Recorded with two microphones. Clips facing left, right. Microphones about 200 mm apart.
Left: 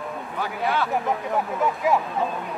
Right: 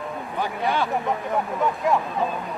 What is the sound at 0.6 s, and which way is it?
Speech, 15° right (ahead or behind).